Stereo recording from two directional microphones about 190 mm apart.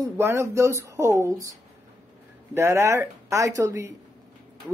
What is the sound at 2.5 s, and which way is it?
A woman's voice, 15° right (ahead or behind).